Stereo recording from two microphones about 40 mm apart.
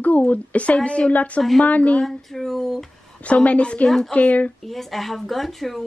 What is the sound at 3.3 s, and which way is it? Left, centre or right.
Speech, left.